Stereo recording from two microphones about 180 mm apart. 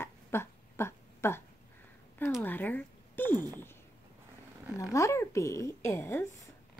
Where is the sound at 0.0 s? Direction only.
15° left (ahead or behind).